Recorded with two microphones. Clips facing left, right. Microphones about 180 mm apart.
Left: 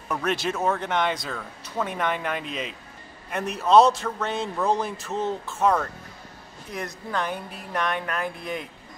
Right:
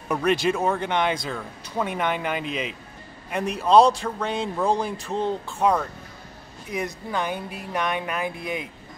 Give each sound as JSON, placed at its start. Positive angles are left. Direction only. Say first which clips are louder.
{"t": 0.2, "sound": "speech", "louder": "right 4 dB", "side_deg": 0}
{"t": 5.6, "sound": "speech", "louder": "even", "side_deg": -10}